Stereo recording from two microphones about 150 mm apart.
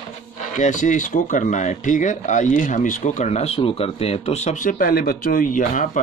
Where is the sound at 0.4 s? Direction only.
55° left (ahead or behind).